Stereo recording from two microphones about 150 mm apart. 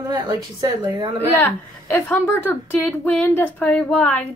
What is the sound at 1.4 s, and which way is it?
Speech, 15° left (ahead or behind).